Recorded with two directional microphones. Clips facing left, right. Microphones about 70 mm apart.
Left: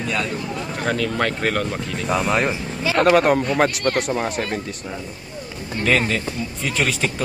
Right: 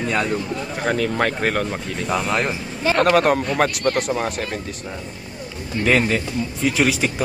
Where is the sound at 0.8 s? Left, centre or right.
Centre.